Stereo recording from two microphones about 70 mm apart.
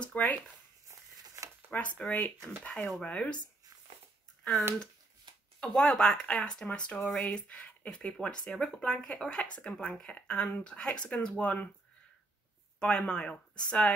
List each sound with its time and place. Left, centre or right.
0.0 s zipper: centre
0.8 s a sound: right
1.7 s speech: centre
5.7 s speech: centre
12.7 s speech: centre